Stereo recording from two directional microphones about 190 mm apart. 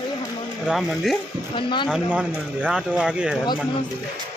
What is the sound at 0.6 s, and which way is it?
Speech, centre (ahead or behind).